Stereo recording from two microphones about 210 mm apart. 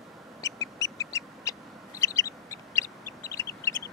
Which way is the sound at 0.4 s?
15° left (ahead or behind).